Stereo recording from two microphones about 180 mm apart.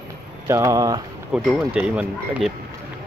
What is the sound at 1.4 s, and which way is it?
Speech, centre (ahead or behind).